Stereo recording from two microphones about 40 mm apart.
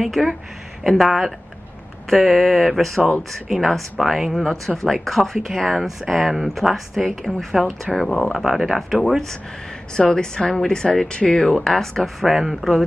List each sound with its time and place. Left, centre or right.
0.0 s speech: centre
8.5 s speech: centre
8.9 s speech: centre
9.9 s speech: centre
12.2 s speech: centre